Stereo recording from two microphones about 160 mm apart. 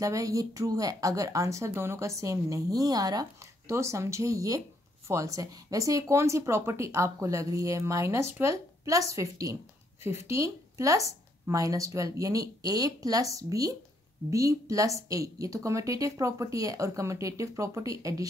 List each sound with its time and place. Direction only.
0.0 s a woman's voice: 20° right (ahead or behind)